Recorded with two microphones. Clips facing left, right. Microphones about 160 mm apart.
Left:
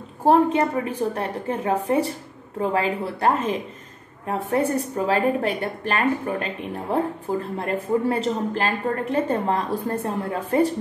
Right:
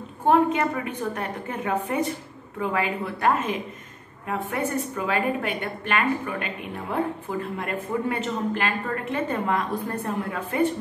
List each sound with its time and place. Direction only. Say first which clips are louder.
0.2 s a woman's voice: left 3 dB; 35° left (ahead or behind)